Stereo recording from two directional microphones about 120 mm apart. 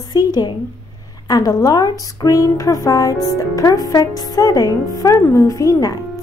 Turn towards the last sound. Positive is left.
turn(degrees=30)  # may be behind; listen again after turning